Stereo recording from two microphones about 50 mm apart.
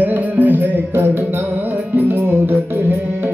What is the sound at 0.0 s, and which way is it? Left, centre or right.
Music, right.